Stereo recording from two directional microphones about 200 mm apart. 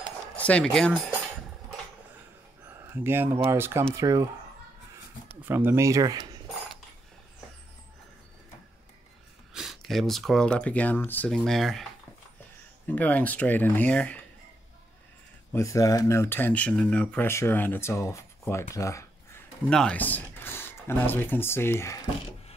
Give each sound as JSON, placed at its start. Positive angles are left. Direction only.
{"t": 0.4, "sound": "speech", "side_deg": 5}
{"t": 2.8, "sound": "speech", "side_deg": -10}
{"t": 5.4, "sound": "speech", "side_deg": -10}
{"t": 9.5, "sound": "speech", "side_deg": 0}
{"t": 15.5, "sound": "speech", "side_deg": 15}
{"t": 19.7, "sound": "speech", "side_deg": 5}